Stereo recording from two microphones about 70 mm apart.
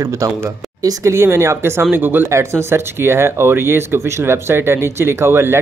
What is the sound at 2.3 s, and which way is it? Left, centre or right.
Speech, right.